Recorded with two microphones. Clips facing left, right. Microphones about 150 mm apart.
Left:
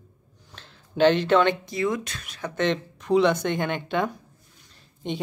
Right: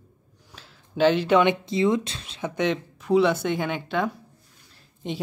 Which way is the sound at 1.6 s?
25° right (ahead or behind).